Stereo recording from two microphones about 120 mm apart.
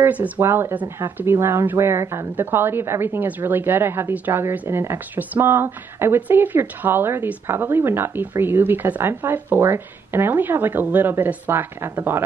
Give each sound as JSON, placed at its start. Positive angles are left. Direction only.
{"t": 0.0, "sound": "speech", "side_deg": -15}